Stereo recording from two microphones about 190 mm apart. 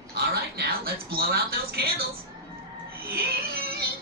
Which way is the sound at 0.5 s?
55° right (ahead or behind).